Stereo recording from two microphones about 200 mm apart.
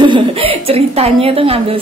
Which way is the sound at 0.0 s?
25° right (ahead or behind).